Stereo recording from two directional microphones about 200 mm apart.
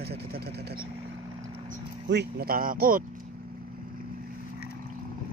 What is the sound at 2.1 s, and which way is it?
Speech, 55° right (ahead or behind).